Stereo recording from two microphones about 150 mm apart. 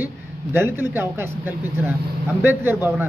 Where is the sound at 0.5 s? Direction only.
15° right (ahead or behind).